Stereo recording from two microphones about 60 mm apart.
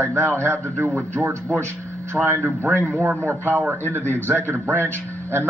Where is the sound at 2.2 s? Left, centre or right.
Centre.